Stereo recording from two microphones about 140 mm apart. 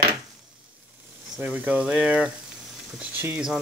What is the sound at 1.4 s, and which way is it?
Speech, 10° right (ahead or behind).